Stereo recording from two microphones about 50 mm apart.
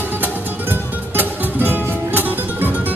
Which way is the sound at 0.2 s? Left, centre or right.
Right.